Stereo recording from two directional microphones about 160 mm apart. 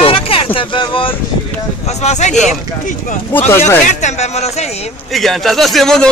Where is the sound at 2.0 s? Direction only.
45° left (ahead or behind).